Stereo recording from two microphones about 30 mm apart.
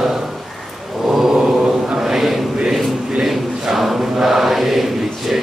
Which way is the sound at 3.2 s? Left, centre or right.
Centre.